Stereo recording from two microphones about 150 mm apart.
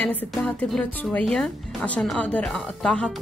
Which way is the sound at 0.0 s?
10° left (ahead or behind).